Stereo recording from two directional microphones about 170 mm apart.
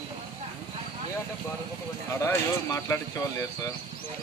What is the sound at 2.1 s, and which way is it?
Speech, 15° left (ahead or behind).